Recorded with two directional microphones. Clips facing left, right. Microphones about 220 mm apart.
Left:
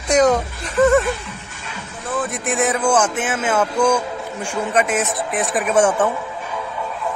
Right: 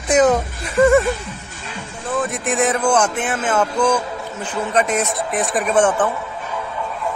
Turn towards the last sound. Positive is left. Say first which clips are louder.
# even
turn(degrees=10)  # may be behind; listen again after turning